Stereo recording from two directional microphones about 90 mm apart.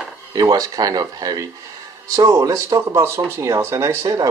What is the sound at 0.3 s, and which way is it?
Speech, 40° right (ahead or behind).